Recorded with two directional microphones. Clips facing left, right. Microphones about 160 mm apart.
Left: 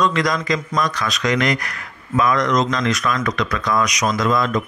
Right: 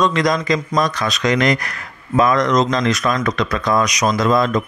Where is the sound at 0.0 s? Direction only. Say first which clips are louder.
Right 2 dB; 25° right (ahead or behind).